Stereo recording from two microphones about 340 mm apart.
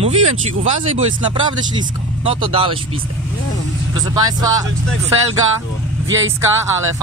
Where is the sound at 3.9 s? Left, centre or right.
Centre.